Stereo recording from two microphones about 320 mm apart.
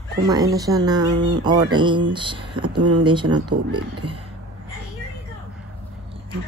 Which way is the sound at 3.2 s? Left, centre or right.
Right.